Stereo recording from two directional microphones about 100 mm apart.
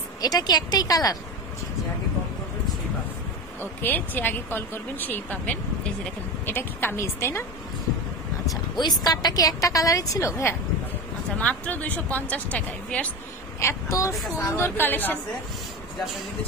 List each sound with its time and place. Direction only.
0.2 s a woman's voice: 45° left (ahead or behind)
3.8 s a woman's voice: 20° left (ahead or behind)
8.5 s a woman's voice: 45° left (ahead or behind); by 10.5 s 30° left (ahead or behind)
11.4 s speech: 15° left (ahead or behind)
13.6 s a woman's voice: 30° left (ahead or behind)